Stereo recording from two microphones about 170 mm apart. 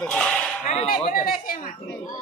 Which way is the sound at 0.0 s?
5° left (ahead or behind).